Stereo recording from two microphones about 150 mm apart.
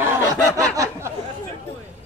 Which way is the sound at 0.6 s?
20° right (ahead or behind).